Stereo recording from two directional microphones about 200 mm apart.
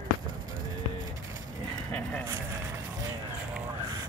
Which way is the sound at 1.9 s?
5° left (ahead or behind).